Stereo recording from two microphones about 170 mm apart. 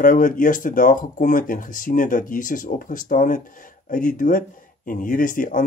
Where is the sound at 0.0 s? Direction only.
50° left (ahead or behind).